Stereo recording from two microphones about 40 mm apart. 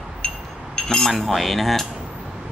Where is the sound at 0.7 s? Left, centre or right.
Centre.